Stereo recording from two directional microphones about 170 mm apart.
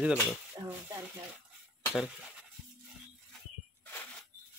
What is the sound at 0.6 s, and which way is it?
Speech, 20° right (ahead or behind).